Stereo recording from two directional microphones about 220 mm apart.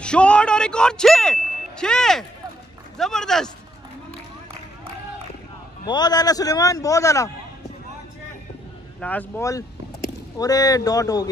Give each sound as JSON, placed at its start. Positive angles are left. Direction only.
{"t": 0.0, "sound": "ding", "side_deg": 5}
{"t": 3.0, "sound": "speech", "side_deg": 0}
{"t": 5.9, "sound": "a man's voice", "side_deg": 20}
{"t": 9.0, "sound": "a man's voice", "side_deg": 5}